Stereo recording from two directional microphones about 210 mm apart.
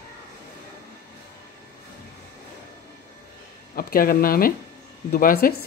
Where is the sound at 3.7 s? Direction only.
45° left (ahead or behind).